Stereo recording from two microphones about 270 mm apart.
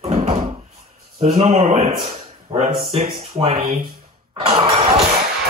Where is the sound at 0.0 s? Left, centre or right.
Right.